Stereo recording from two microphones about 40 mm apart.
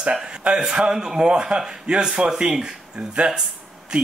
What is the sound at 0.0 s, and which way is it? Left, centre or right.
Speech, right.